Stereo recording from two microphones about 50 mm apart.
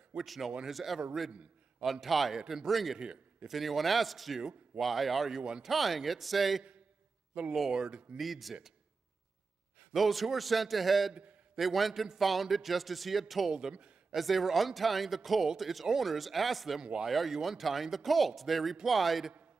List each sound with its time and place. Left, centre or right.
0.2 s speech: centre
1.3 s a sound: centre
1.9 s speech: centre
3.0 s a man's voice: right
3.4 s speech: centre
7.7 s speech: centre
8.2 s speech: centre
9.9 s speech: centre
13.5 s speech: centre
14.1 s speech: centre
16.8 s speech: centre
17.1 s speech: centre